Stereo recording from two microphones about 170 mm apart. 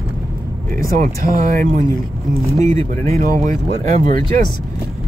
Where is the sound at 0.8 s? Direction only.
55° right (ahead or behind).